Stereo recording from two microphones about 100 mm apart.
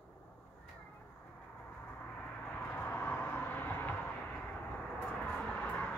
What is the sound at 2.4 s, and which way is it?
Vehicle, 15° left (ahead or behind).